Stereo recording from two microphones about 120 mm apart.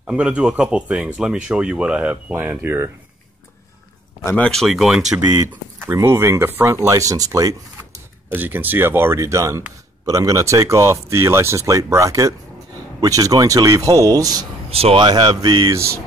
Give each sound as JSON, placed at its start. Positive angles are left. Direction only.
{"t": 0.0, "sound": "speech", "side_deg": -10}
{"t": 4.4, "sound": "speech", "side_deg": 5}
{"t": 5.9, "sound": "speech", "side_deg": -20}
{"t": 8.4, "sound": "speech", "side_deg": -15}
{"t": 14.7, "sound": "speech", "side_deg": -55}
{"t": 15.0, "sound": "speech", "side_deg": -35}
{"t": 15.7, "sound": "speech", "side_deg": -25}